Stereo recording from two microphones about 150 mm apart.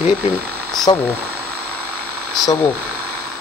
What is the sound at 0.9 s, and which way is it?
Speech, 30° left (ahead or behind).